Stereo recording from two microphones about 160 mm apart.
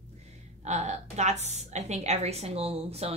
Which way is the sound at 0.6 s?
45° right (ahead or behind).